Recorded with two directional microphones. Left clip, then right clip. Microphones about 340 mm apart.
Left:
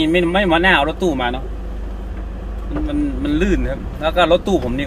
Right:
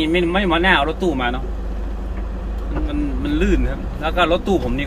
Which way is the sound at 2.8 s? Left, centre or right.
Centre.